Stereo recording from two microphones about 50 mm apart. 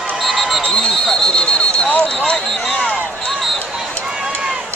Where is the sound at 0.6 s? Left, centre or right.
Left.